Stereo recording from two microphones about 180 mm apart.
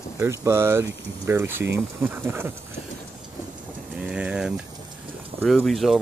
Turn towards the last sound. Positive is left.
turn(degrees=0)  # may be behind; listen again after turning